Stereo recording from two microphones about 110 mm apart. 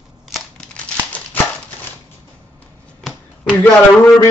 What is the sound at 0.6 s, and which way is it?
Crumpling, 10° left (ahead or behind).